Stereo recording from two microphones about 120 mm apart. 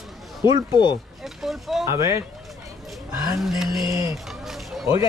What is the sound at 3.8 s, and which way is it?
Speech, 25° right (ahead or behind).